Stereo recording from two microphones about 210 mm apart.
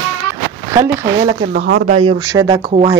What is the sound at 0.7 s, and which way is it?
Speech, 15° right (ahead or behind).